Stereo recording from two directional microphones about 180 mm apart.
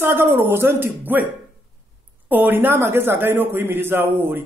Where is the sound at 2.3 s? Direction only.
10° right (ahead or behind).